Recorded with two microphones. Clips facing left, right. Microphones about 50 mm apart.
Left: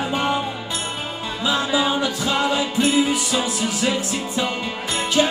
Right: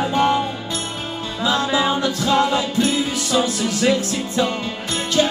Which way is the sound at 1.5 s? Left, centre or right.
Centre.